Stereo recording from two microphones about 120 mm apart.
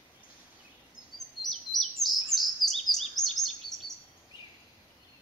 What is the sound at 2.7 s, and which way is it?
Bird vocalization, centre (ahead or behind).